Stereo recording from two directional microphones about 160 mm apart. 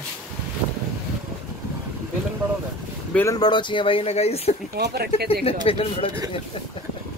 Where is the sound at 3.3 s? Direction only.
25° left (ahead or behind).